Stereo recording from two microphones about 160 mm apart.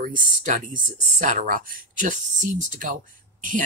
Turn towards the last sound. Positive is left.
turn(degrees=-55)  # may be behind; listen again after turning